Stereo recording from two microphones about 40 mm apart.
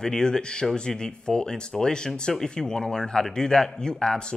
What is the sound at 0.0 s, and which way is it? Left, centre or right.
Speech, centre.